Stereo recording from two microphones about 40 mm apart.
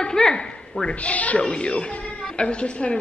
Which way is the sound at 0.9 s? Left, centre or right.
Left.